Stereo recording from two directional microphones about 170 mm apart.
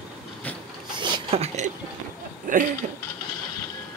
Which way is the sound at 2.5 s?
50° right (ahead or behind).